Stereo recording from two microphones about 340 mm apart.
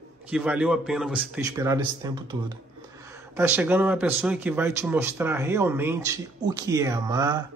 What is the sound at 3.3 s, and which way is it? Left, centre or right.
A man's voice, centre.